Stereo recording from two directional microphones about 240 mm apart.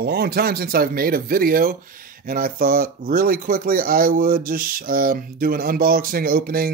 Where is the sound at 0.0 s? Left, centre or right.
Right.